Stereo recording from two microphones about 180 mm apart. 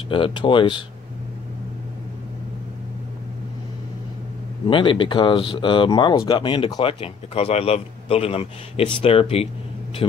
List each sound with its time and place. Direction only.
0.1 s speech: 25° left (ahead or behind)
4.6 s speech: 30° left (ahead or behind)